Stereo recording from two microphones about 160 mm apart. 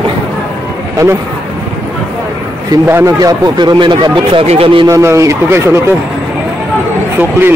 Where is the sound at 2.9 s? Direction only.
20° right (ahead or behind); by 4.9 s 35° right (ahead or behind).